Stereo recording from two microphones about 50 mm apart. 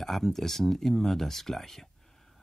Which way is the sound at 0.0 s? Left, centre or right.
Centre.